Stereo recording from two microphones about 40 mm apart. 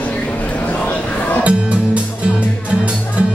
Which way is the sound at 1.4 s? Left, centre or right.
Right.